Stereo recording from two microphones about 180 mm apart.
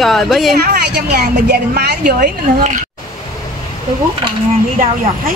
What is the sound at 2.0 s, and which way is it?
Speech, 45° right (ahead or behind).